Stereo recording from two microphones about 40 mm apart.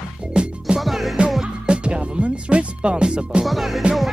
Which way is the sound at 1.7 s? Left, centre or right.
Right.